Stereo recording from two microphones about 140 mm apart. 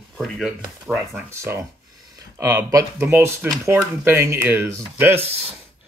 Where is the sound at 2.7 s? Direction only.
25° right (ahead or behind).